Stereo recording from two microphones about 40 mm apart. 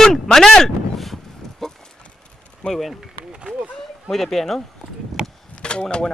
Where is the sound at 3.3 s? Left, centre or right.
Right.